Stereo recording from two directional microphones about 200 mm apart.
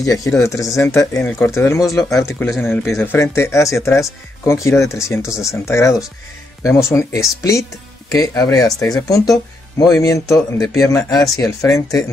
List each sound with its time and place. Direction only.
0.0 s speech: 15° left (ahead or behind)